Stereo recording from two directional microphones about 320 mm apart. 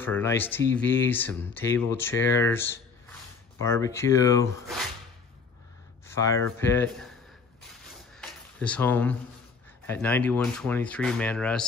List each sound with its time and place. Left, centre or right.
0.0 s speech: centre
6.1 s speech: centre
8.1 s a sound: centre
9.8 s speech: centre